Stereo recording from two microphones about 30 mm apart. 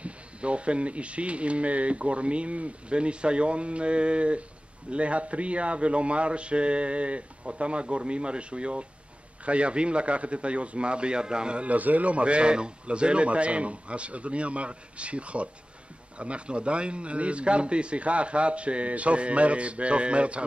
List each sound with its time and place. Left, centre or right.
0.0 s speech: right
11.6 s speech: right